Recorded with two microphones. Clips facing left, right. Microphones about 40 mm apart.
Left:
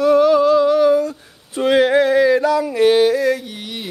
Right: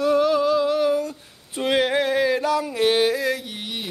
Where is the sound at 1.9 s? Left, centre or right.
Right.